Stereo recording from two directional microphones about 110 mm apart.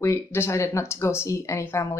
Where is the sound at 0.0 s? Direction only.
25° left (ahead or behind).